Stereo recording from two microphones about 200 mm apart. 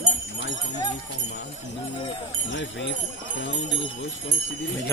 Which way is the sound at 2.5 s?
65° left (ahead or behind).